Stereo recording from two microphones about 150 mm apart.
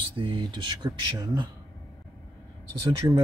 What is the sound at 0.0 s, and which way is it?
Speech, 35° right (ahead or behind).